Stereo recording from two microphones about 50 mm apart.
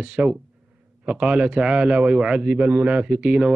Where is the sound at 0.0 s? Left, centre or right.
Right.